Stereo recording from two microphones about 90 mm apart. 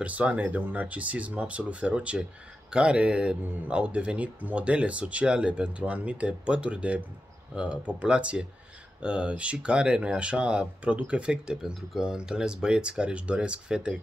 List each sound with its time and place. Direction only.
0.0 s speech: 15° right (ahead or behind)